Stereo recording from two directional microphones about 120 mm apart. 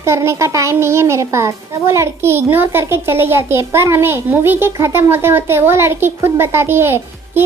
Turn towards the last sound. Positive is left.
turn(degrees=-20)  # may be behind; listen again after turning